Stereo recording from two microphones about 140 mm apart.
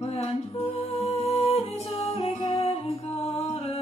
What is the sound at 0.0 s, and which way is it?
Music, 45° left (ahead or behind).